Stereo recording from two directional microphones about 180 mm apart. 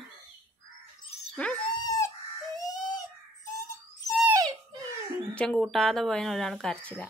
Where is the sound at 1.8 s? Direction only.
20° left (ahead or behind).